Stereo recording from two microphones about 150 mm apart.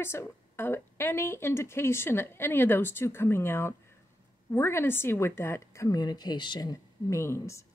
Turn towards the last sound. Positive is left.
turn(degrees=20)  # may be behind; listen again after turning